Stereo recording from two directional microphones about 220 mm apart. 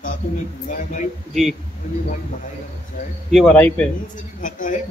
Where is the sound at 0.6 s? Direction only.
35° left (ahead or behind).